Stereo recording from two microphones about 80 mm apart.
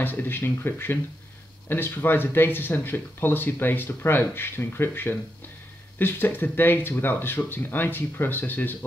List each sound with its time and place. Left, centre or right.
0.0 s speech: left